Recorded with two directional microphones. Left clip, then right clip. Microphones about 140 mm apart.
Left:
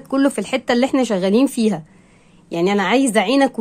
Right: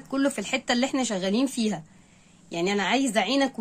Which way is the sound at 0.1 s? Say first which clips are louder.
Left 8 dB; 45° left (ahead or behind).